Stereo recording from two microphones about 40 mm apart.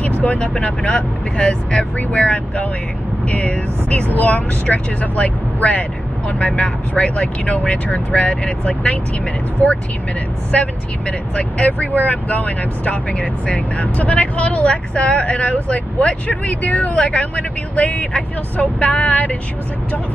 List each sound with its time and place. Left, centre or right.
0.6 s speech: left
10.5 s speech: left